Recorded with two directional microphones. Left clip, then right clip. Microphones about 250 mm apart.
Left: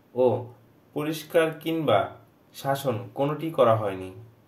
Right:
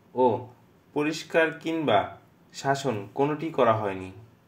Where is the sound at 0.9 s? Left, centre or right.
Right.